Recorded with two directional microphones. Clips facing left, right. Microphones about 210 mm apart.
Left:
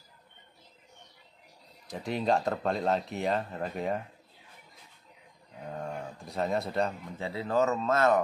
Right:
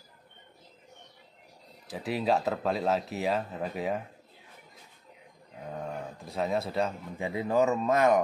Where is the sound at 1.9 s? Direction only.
5° right (ahead or behind).